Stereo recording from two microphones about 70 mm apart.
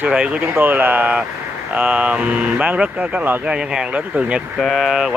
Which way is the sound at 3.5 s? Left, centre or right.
Centre.